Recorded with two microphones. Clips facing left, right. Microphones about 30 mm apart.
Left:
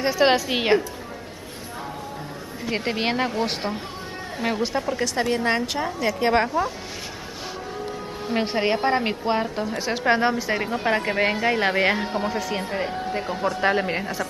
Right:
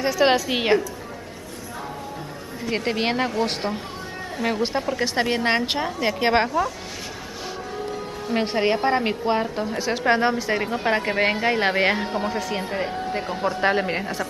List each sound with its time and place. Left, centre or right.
0.0 s a woman's voice: centre
2.6 s a woman's voice: centre
5.0 s a woman's voice: right
8.3 s a woman's voice: centre